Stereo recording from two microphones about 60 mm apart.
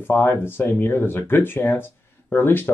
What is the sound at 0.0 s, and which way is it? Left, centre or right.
Speech, left.